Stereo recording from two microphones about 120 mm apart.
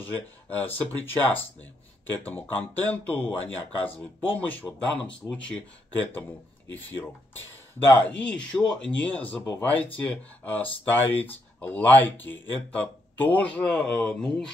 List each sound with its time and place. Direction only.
0.0 s speech: 15° left (ahead or behind)